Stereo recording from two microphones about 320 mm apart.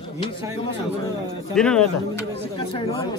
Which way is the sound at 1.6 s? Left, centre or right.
Centre.